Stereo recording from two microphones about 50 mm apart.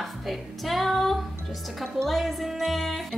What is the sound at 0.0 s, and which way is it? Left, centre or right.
Music, centre.